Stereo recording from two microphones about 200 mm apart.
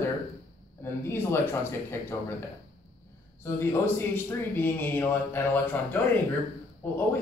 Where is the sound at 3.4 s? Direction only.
10° left (ahead or behind).